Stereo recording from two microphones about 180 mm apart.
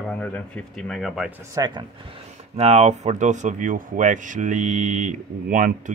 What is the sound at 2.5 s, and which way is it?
Speech, 35° right (ahead or behind).